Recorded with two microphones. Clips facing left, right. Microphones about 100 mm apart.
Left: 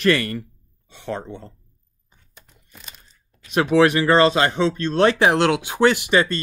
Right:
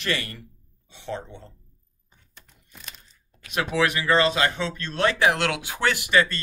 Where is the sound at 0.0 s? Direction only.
55° left (ahead or behind).